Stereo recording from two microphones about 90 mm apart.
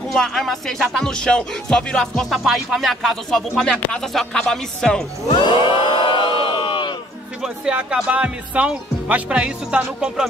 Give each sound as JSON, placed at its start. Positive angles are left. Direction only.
{"t": 0.1, "sound": "music", "side_deg": 0}
{"t": 5.3, "sound": "crowd", "side_deg": 60}
{"t": 7.4, "sound": "speech", "side_deg": -10}